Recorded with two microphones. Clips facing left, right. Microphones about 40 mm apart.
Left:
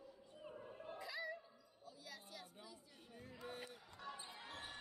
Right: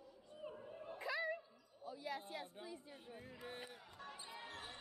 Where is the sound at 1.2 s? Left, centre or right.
Right.